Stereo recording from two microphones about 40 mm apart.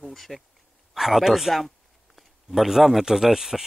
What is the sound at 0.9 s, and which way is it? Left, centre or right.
Speech, centre.